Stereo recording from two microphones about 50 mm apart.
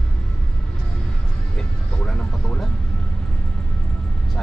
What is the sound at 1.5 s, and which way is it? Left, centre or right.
Vehicle, centre.